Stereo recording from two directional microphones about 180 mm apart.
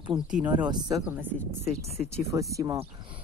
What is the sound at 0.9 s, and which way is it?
Speech, 5° right (ahead or behind).